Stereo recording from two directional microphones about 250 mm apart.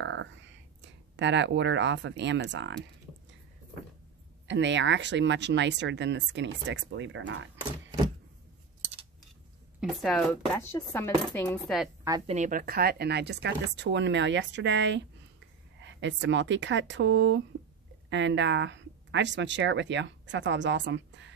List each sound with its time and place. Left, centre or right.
0.0 s whispering: right
1.1 s speech: right
4.5 s speech: right
9.8 s speech: centre
12.3 s speech: right